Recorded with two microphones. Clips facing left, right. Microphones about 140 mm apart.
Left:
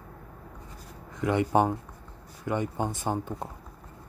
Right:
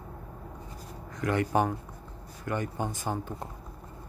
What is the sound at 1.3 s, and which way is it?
Speech, 20° left (ahead or behind).